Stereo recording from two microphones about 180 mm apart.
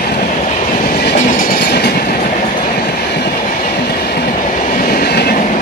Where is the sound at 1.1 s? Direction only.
50° left (ahead or behind); by 1.9 s 65° left (ahead or behind).